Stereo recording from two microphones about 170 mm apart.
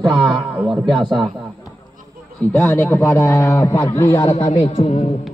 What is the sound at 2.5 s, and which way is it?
A man's voice, 15° left (ahead or behind).